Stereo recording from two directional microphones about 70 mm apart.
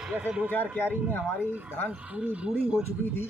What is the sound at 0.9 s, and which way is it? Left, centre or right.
Vehicle, right.